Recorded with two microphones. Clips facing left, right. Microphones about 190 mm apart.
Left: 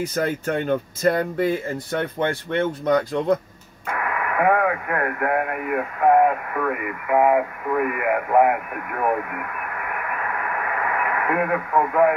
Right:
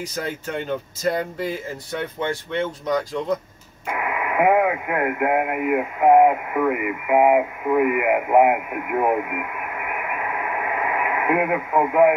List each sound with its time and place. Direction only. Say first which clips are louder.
0.0 s speech: left 5 dB; 55° left (ahead or behind)
3.8 s speech: right 1 dB; 15° right (ahead or behind)